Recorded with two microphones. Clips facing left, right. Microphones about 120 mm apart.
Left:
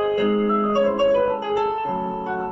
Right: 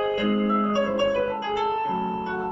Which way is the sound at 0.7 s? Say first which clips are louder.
Left 5 dB; 35° left (ahead or behind).